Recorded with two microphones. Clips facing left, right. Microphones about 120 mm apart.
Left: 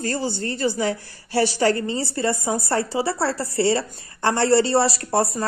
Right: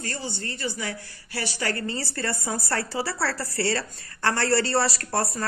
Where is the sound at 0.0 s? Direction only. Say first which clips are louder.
Left 8 dB; 35° left (ahead or behind).